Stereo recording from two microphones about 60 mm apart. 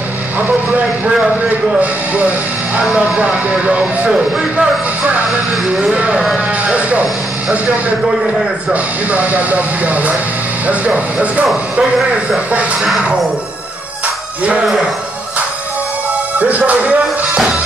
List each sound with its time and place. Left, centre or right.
1.1 s speech: centre
1.8 s speech: right
8.7 s speech: right
14.0 s music: right
16.3 s music: right